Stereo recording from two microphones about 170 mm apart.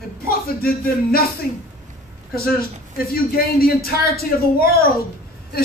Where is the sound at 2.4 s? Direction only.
60° left (ahead or behind).